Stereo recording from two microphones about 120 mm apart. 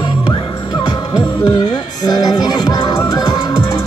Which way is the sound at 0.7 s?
40° left (ahead or behind).